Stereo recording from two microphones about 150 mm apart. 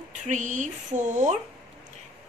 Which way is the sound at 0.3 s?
55° right (ahead or behind).